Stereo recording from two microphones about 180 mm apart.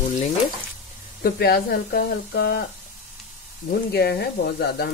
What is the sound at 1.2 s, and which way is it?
Speech, 60° left (ahead or behind).